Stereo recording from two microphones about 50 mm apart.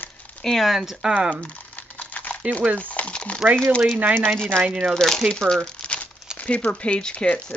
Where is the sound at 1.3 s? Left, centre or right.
Left.